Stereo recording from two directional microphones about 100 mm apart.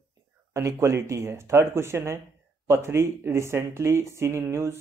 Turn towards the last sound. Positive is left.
turn(degrees=-25)  # may be behind; listen again after turning